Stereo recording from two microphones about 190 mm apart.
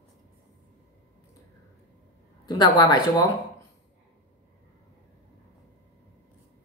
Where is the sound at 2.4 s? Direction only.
20° left (ahead or behind).